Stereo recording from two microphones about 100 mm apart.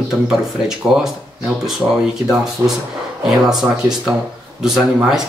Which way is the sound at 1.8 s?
15° right (ahead or behind).